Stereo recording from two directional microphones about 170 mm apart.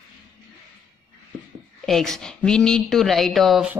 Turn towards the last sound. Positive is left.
turn(degrees=-5)  # may be behind; listen again after turning